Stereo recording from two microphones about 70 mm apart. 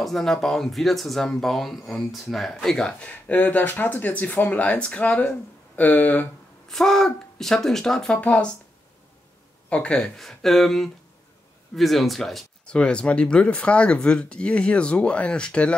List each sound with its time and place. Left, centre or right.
0.0 s speech: centre; by 6.2 s left
6.7 s speech: centre
9.7 s speech: centre
12.6 s speech: centre